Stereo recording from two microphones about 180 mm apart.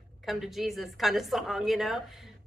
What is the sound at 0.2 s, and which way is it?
A woman's voice, centre (ahead or behind).